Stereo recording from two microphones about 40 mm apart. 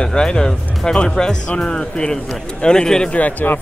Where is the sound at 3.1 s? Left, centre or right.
Left.